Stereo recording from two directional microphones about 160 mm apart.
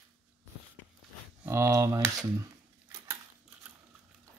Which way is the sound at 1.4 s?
15° right (ahead or behind).